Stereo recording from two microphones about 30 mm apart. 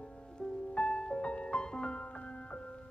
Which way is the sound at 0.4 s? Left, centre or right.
Centre.